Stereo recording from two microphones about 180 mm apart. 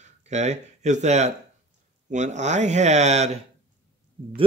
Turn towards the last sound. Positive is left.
turn(degrees=-40)  # may be behind; listen again after turning